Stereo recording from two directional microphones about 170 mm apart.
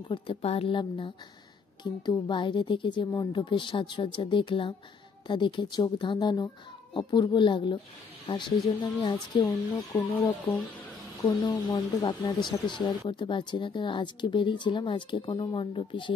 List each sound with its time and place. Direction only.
0.1 s a woman's voice: 30° left (ahead or behind)